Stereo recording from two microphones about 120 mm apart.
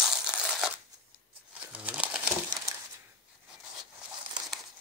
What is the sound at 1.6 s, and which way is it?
Bird, 10° right (ahead or behind).